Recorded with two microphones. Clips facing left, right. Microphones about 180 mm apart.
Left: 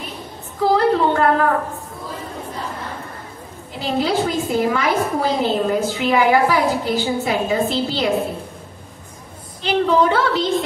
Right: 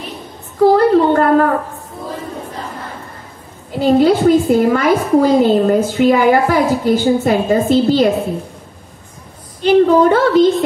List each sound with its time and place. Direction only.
0.6 s a sound: 45° right (ahead or behind)
3.8 s a woman's voice: 50° right (ahead or behind)
9.6 s a woman's voice: 50° right (ahead or behind)